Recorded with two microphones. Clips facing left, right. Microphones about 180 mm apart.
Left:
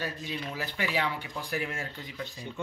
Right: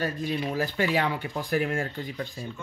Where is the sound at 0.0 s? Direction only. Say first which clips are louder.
Right 7 dB; 50° right (ahead or behind).